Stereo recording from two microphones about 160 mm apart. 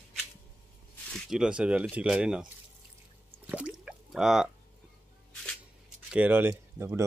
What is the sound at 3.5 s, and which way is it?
Drip, 5° right (ahead or behind).